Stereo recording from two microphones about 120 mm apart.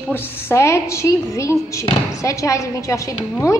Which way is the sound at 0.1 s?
20° left (ahead or behind).